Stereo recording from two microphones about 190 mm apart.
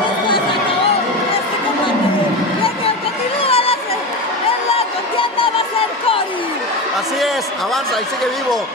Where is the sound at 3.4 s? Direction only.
30° left (ahead or behind).